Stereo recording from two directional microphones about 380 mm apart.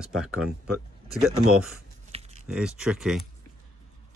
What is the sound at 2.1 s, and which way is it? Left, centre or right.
Typing, centre.